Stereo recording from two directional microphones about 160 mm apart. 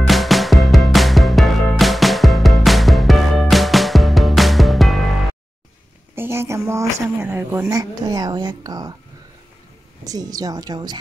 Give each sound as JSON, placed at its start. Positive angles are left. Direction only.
{"t": 0.0, "sound": "music", "side_deg": 0}
{"t": 6.1, "sound": "a woman's voice", "side_deg": -15}
{"t": 10.0, "sound": "a woman's voice", "side_deg": -25}